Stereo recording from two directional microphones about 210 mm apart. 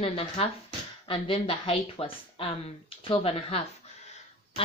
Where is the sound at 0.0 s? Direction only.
30° left (ahead or behind).